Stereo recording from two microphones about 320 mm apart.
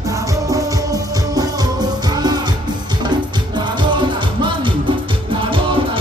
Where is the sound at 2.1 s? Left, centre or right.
Centre.